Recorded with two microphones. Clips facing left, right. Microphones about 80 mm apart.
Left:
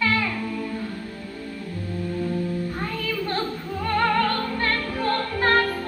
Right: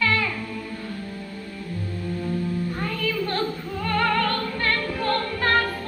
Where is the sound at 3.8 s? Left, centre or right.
Left.